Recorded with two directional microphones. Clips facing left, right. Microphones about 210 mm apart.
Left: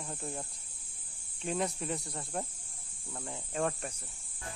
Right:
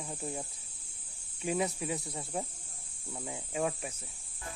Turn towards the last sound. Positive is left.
turn(degrees=-5)  # may be behind; listen again after turning